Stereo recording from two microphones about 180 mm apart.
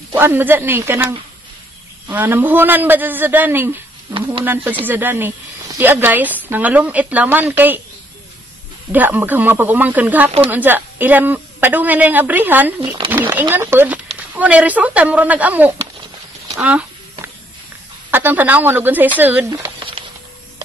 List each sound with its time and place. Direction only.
0.1 s speech: 10° right (ahead or behind)
4.8 s speech: 10° right (ahead or behind)
8.9 s speech: 10° right (ahead or behind)
16.5 s a sound: 5° right (ahead or behind)
18.1 s speech: 10° right (ahead or behind)
19.5 s a sound: 25° right (ahead or behind)